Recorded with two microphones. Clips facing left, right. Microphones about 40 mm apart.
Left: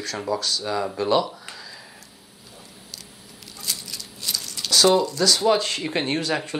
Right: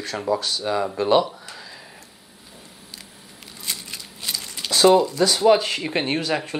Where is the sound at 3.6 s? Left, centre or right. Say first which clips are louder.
Right 1 dB; right.